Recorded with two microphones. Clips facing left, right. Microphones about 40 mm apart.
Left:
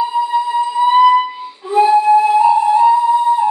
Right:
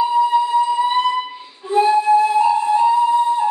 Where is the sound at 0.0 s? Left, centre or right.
Centre.